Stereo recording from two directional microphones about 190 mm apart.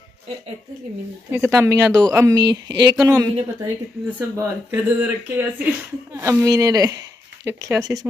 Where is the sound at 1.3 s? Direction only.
10° right (ahead or behind).